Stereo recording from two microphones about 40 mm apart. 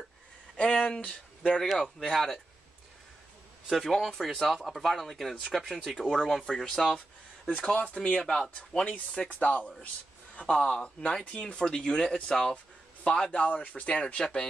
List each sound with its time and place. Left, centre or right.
0.6 s speech: left
1.8 s speech: centre
3.7 s speech: centre
7.5 s speech: left
8.3 s speech: centre
8.8 s speech: left